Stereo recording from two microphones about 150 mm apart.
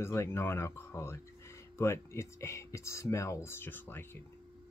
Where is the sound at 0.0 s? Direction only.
20° left (ahead or behind).